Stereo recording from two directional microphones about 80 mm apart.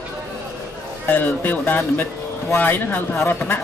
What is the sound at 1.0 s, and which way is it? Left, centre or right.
Speech, left.